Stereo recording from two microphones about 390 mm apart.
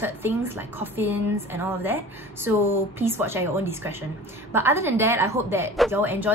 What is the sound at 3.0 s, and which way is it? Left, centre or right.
A woman's voice, centre.